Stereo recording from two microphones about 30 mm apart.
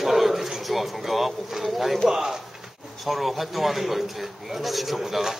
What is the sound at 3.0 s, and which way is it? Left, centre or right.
A man's voice, centre.